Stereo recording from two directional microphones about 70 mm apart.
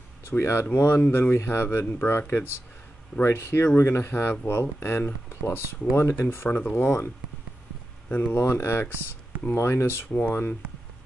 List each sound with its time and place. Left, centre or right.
0.3 s speech: left
8.1 s speech: left
8.4 s speech: left